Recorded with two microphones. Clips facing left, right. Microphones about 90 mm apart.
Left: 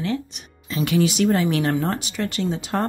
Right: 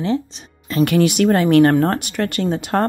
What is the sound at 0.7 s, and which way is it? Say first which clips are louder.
Speech: right 5 dB; 55° right (ahead or behind).